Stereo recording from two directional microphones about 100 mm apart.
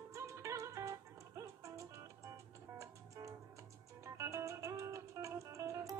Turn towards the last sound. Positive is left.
turn(degrees=-30)  # may be behind; listen again after turning